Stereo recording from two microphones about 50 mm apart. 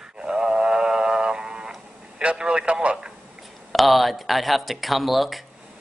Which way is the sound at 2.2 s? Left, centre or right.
Right.